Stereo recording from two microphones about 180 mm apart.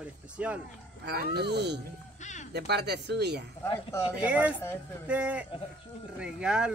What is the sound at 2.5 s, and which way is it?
Speech, 65° right (ahead or behind).